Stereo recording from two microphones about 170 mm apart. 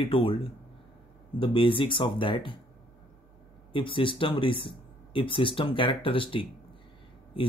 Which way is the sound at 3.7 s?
30° left (ahead or behind).